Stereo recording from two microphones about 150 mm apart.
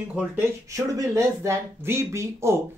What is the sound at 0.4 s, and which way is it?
Speech, 20° right (ahead or behind).